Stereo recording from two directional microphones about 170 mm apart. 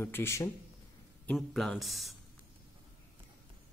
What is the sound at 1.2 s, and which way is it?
Speech, centre (ahead or behind).